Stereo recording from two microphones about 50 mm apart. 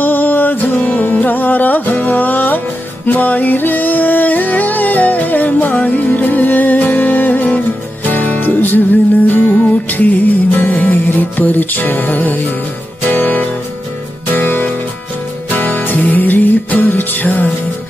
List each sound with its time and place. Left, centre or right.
0.0 s music: left